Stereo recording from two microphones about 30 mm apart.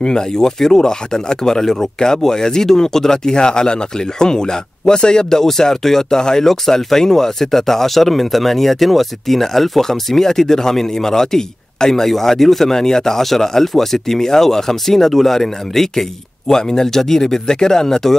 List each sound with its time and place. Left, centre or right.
0.0 s speech: left